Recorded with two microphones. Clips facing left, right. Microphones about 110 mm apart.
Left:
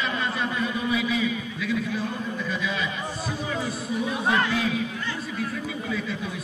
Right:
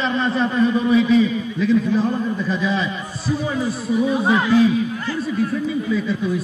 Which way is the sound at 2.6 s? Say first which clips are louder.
Right 8 dB; 30° right (ahead or behind).